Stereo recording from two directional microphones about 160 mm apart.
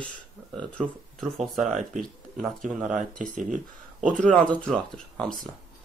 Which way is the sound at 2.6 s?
50° right (ahead or behind).